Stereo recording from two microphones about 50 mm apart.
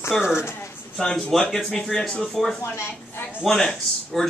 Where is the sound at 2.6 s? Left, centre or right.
Left.